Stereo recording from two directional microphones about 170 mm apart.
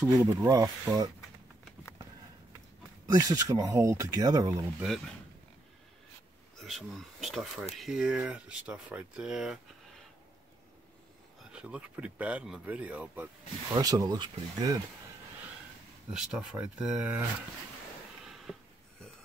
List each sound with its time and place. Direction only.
0.1 s speech: 20° right (ahead or behind)
3.1 s speech: 20° right (ahead or behind)
6.6 s speech: centre (ahead or behind)
11.5 s speech: 5° right (ahead or behind)
13.7 s speech: 20° right (ahead or behind)
16.1 s speech: 5° right (ahead or behind)
18.2 s a sound: centre (ahead or behind)